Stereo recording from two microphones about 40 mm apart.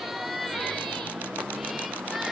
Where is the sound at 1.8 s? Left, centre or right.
Right.